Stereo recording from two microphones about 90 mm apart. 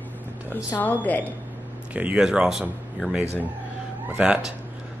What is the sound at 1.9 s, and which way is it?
Speech, 10° right (ahead or behind).